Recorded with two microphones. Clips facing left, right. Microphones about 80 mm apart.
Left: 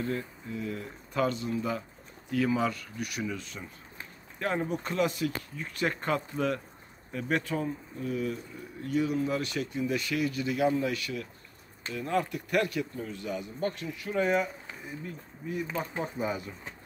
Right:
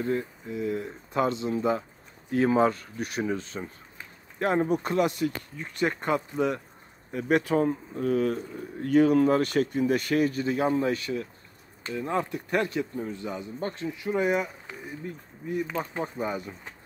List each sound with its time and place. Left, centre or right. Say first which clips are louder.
0.0 s speech: right 5 dB; right
4.8 s speech: right 4 dB; centre
7.5 s speech: right 8 dB; right
9.4 s speech: right 7 dB; right; by 16.5 s centre